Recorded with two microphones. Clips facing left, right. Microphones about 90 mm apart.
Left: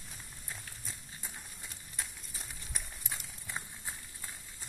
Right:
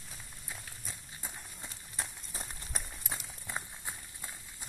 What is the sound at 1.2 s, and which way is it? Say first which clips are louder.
Run: right 3 dB; 25° right (ahead or behind).